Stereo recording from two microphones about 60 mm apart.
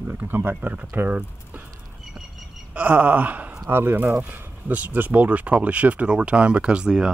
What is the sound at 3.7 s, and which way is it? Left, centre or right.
Speech, right.